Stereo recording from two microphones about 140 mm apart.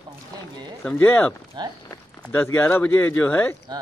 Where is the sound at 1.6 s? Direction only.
30° right (ahead or behind).